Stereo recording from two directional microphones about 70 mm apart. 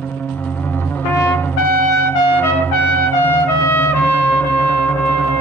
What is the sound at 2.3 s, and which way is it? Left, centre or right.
Trumpet, left.